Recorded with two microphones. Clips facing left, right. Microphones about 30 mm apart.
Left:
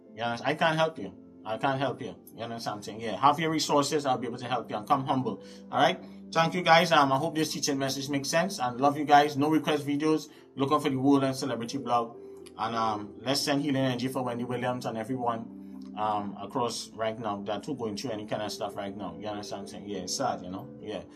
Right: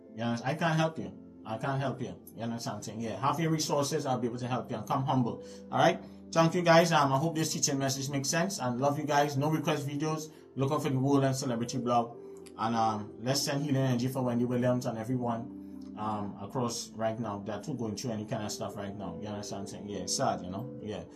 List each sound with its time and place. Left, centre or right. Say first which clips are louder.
0.2 s a man's voice: left 2 dB; left
0.7 s speech: left 1 dB; left
1.6 s speech: left 6 dB; left
2.3 s a man's voice: left 2 dB; left
3.0 s speech: left 6 dB; left
4.1 s a man's voice: left 3 dB; left
5.7 s speech: left 1 dB; centre
6.3 s a man's voice: left 1 dB; left
10.9 s speech: left 1 dB; left
13.2 s a man's voice: left 5 dB; left
16.0 s a man's voice: left 6 dB; left
20.1 s speech: even; centre
20.9 s speech: left 4 dB; left